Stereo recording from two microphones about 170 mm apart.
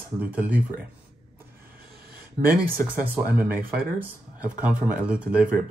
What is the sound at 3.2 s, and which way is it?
Speech, 10° right (ahead or behind).